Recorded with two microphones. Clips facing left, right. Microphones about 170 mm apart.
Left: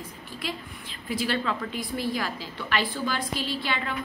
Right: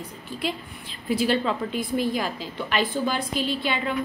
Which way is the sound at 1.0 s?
25° right (ahead or behind).